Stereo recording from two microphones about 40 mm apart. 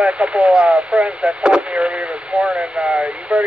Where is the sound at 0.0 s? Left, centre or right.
Right.